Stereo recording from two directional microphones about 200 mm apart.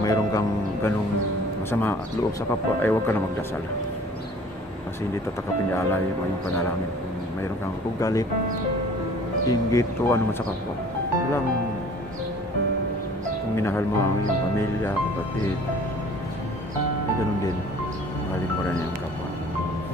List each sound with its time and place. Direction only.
0.0 s speech: 15° left (ahead or behind)
5.7 s speech: 10° left (ahead or behind)
8.0 s speech: 15° left (ahead or behind)
9.5 s speech: 15° left (ahead or behind)
13.6 s speech: 15° left (ahead or behind)